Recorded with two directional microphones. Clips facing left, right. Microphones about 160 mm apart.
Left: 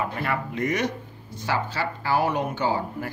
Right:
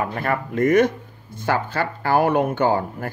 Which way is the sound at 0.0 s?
50° right (ahead or behind).